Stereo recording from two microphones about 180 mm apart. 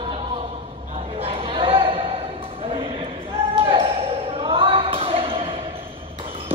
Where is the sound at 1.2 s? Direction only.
30° right (ahead or behind).